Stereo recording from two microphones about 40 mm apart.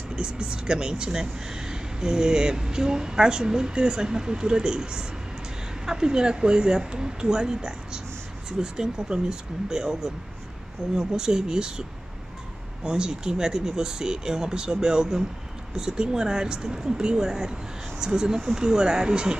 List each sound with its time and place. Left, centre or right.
0.1 s speech: right
12.8 s speech: centre